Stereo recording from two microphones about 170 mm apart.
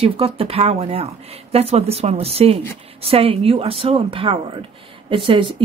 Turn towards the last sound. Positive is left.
turn(degrees=-30)  # may be behind; listen again after turning